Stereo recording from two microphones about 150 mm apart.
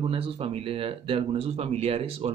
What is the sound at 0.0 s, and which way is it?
Speech, 40° right (ahead or behind).